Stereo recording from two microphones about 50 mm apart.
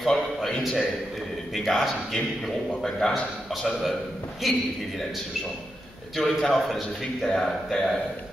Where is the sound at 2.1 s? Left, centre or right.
Centre.